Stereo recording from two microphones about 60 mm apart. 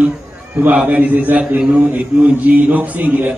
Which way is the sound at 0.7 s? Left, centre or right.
Right.